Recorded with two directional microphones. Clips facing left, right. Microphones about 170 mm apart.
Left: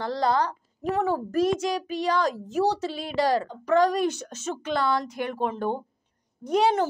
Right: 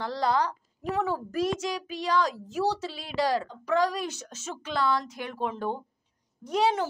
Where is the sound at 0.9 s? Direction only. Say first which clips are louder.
Left 4 dB; 50° left (ahead or behind).